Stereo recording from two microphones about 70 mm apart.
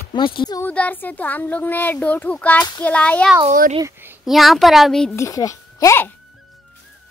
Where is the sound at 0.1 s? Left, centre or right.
Left.